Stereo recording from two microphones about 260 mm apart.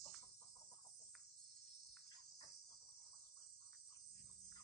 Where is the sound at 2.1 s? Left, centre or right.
Centre.